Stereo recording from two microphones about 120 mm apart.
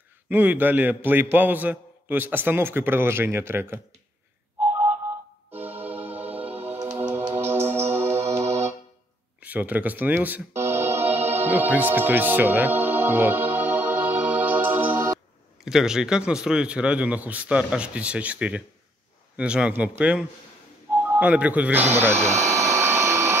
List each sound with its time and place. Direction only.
0.3 s a man's voice: 15° right (ahead or behind)
5.5 s music: 15° right (ahead or behind)
9.4 s speech: 15° right (ahead or behind)
10.9 s music: 60° right (ahead or behind)
11.4 s music: 15° right (ahead or behind)
15.6 s a man's voice: 5° right (ahead or behind)
21.9 s vacuum cleaner: 20° right (ahead or behind)